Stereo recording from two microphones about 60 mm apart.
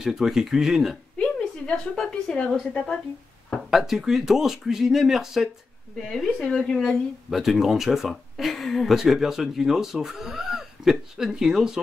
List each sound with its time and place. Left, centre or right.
0.0 s speech: centre
1.2 s a woman's voice: centre
3.7 s speech: centre
6.1 s speech: centre
7.2 s speech: centre